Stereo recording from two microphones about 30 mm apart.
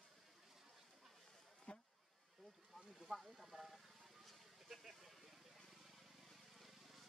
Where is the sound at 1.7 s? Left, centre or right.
Left.